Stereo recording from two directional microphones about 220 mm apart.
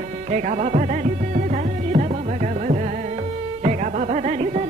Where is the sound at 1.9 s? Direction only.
35° right (ahead or behind).